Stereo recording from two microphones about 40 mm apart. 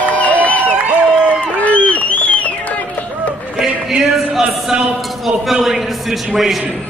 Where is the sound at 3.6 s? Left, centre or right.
Centre.